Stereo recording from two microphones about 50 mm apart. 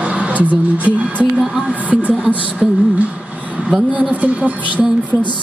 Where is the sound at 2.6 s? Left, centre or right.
Centre.